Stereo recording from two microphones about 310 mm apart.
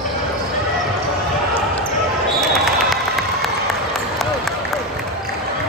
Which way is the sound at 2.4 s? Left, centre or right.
Centre.